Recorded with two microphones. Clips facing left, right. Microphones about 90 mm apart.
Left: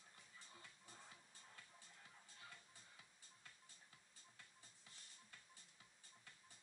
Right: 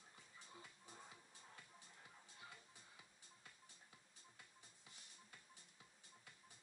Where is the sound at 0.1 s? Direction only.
15° right (ahead or behind).